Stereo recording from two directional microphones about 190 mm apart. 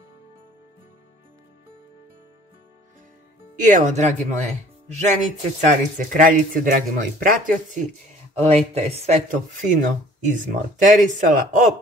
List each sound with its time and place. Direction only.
3.5 s speech: 40° right (ahead or behind)